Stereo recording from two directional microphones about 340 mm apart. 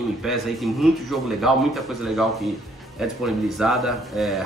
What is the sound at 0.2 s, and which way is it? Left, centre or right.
Speech, centre.